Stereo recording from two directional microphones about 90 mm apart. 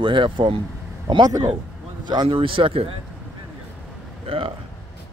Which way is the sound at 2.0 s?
60° right (ahead or behind).